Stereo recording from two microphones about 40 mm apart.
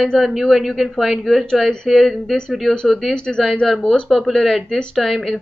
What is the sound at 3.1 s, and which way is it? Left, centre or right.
Speech, left.